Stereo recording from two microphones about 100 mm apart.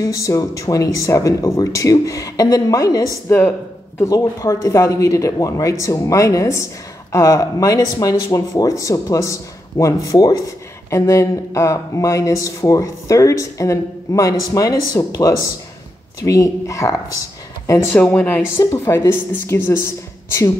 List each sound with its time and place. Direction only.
0.0 s speech: 35° left (ahead or behind)
3.3 s speech: 20° left (ahead or behind)
4.0 s speech: 35° left (ahead or behind)
17.9 s a woman's voice: 15° left (ahead or behind)
18.6 s speech: 30° left (ahead or behind)